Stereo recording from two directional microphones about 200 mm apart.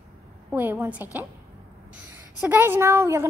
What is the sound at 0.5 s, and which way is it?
A woman's voice, 10° right (ahead or behind).